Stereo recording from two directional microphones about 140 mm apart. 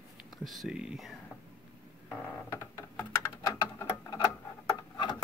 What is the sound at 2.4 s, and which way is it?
Computer keyboard, 20° left (ahead or behind).